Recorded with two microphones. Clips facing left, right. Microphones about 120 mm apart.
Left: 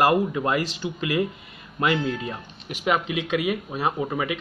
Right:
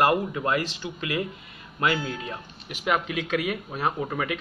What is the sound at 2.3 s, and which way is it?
Speech, 15° left (ahead or behind).